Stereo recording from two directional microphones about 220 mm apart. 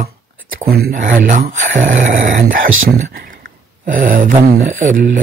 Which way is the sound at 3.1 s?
40° right (ahead or behind).